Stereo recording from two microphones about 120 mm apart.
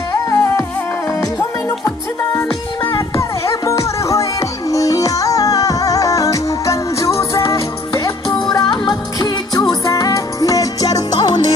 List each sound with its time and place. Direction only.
0.3 s music: 25° left (ahead or behind)
2.8 s music: 20° left (ahead or behind)